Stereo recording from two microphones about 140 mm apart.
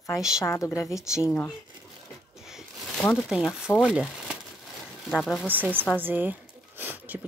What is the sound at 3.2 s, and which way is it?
Speech, 5° right (ahead or behind).